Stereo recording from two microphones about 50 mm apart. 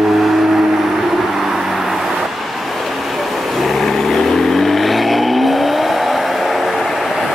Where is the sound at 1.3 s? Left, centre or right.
Centre.